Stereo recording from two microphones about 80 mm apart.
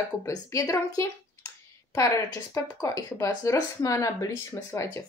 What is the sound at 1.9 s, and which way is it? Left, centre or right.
Speech, left.